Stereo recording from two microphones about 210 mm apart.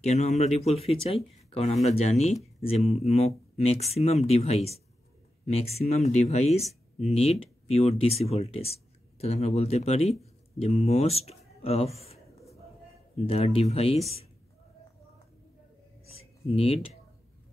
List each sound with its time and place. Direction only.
0.0 s speech: 30° left (ahead or behind)
13.3 s speech: 30° left (ahead or behind)
16.2 s a sound: 30° left (ahead or behind)